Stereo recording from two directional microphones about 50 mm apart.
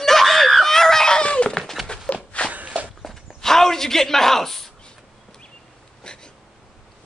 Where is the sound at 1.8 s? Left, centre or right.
Left.